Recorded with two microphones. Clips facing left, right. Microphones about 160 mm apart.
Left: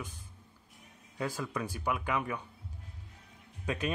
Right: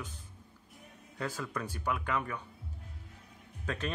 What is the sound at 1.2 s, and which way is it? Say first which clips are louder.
Speech: left 2 dB; 10° left (ahead or behind).